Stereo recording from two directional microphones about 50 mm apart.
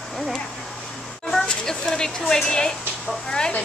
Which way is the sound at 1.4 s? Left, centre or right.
Centre.